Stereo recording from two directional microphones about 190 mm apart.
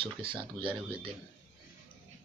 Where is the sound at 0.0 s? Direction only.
25° right (ahead or behind).